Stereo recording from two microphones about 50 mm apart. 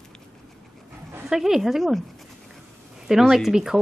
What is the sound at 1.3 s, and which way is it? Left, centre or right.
Speech, centre.